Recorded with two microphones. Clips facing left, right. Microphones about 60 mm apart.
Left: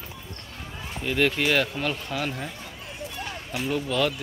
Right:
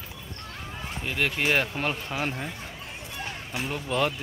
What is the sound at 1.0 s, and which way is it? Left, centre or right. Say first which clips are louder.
Speech: left 4 dB; centre.